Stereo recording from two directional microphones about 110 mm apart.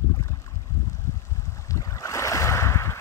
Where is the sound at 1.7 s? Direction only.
30° left (ahead or behind).